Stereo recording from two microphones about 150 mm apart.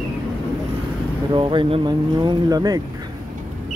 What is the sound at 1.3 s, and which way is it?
Speech, 35° right (ahead or behind).